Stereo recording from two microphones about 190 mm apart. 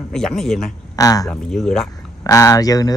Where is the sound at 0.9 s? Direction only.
20° left (ahead or behind).